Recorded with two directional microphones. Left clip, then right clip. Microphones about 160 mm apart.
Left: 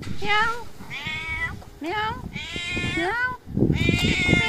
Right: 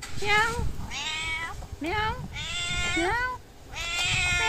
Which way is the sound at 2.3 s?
25° right (ahead or behind).